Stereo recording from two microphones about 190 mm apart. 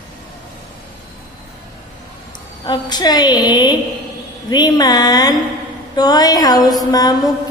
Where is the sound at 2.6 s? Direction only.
20° left (ahead or behind).